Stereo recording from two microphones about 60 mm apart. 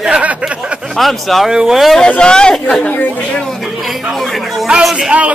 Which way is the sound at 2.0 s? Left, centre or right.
Centre.